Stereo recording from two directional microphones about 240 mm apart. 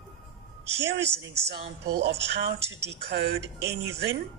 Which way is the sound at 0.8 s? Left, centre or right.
Right.